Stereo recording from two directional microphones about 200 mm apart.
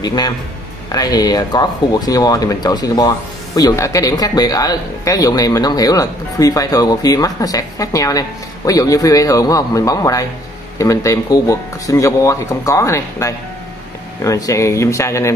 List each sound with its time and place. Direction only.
0.0 s speech: 20° left (ahead or behind)